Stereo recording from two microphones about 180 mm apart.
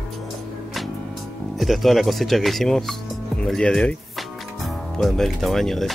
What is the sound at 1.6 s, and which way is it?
Speech, centre (ahead or behind).